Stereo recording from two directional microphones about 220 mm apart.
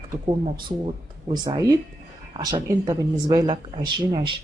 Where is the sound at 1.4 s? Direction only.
15° right (ahead or behind).